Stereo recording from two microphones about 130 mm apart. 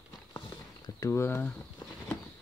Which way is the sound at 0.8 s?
25° left (ahead or behind).